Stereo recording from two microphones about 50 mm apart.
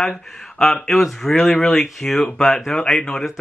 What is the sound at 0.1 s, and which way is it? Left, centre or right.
Speech, centre.